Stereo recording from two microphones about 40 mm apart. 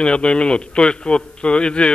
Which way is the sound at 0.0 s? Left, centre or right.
Left.